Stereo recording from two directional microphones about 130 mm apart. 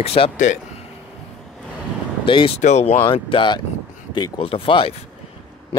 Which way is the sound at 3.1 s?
40° left (ahead or behind).